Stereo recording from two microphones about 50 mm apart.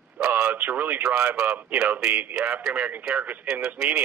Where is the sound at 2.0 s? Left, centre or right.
Right.